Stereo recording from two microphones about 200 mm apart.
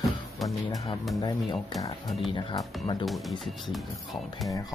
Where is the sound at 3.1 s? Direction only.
Centre (ahead or behind).